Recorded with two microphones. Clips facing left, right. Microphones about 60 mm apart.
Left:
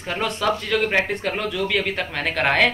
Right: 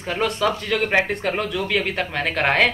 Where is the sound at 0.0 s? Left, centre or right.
Centre.